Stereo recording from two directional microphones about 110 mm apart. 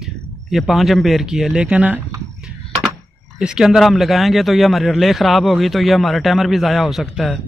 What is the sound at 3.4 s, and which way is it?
A man's voice, 5° right (ahead or behind).